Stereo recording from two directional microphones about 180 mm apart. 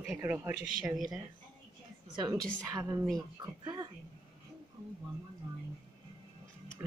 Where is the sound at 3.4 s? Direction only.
25° right (ahead or behind).